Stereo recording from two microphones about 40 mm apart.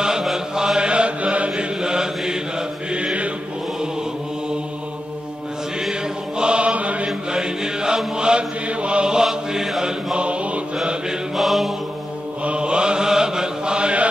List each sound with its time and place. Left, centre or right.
0.0 s chant: centre
0.7 s mantra: right
5.8 s mantra: centre
7.2 s music: centre
8.2 s mantra: right
10.1 s mantra: right
11.3 s mantra: centre
12.4 s mantra: right